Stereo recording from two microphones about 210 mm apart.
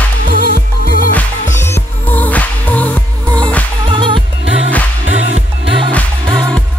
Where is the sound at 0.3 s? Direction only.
45° left (ahead or behind).